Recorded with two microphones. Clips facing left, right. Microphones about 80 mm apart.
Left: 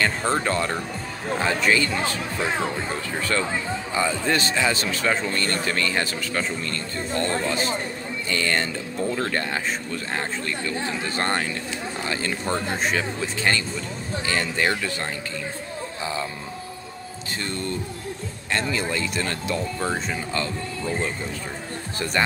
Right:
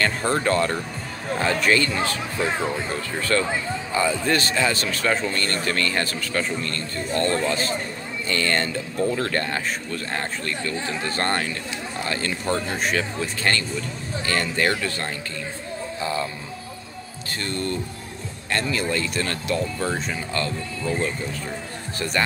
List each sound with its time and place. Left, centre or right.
0.0 s speech: centre
3.2 s speech: centre
5.0 s speech: centre
5.3 s speech: centre
17.4 s speech: centre